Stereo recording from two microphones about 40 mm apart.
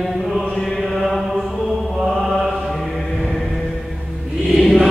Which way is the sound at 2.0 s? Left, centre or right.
Centre.